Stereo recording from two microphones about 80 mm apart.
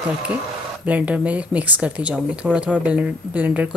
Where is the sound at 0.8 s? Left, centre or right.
Centre.